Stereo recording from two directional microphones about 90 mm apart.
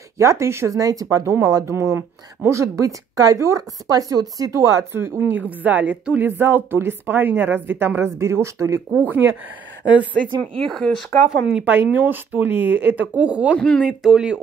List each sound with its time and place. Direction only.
0.2 s speech: 30° right (ahead or behind)
4.9 s speech: 25° right (ahead or behind)
10.3 s speech: 90° right
10.7 s speech: 5° left (ahead or behind)
11.2 s speech: 5° right (ahead or behind)
11.6 s speech: 20° right (ahead or behind)
13.6 s speech: 5° left (ahead or behind)
13.8 s speech: 10° right (ahead or behind)